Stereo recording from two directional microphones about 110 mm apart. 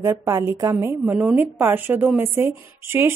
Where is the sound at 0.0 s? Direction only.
25° right (ahead or behind).